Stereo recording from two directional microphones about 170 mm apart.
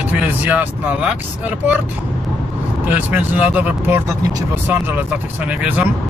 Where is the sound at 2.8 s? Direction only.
10° right (ahead or behind).